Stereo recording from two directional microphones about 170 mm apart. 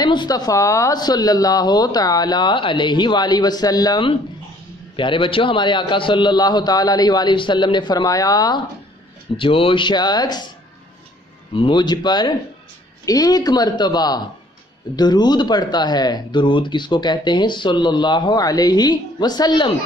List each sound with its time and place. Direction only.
0.0 s speech: 25° left (ahead or behind)
11.5 s speech: 30° left (ahead or behind)